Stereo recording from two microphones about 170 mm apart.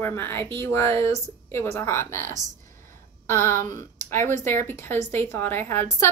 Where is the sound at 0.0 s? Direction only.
10° left (ahead or behind).